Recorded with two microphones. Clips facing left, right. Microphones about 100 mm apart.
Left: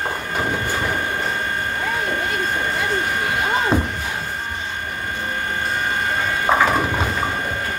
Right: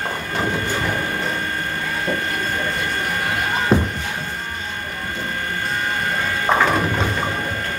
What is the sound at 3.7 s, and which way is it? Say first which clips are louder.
Music: right 6 dB; centre (ahead or behind).